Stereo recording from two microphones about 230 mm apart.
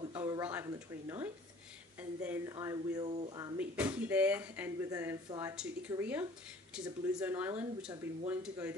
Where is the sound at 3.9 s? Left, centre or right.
Centre.